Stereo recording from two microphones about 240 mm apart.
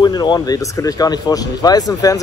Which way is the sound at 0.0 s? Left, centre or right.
Centre.